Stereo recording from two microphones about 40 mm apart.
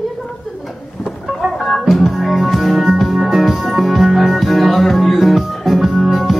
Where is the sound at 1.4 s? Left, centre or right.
Centre.